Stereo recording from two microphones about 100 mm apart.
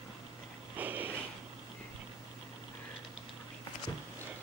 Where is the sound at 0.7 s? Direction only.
15° right (ahead or behind).